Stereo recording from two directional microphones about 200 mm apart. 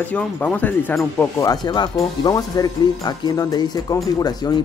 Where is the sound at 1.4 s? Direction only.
20° left (ahead or behind).